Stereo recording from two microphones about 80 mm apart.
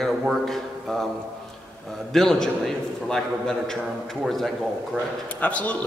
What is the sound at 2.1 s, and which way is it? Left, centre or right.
A man's voice, centre.